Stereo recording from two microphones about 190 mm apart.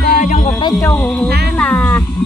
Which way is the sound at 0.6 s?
20° left (ahead or behind).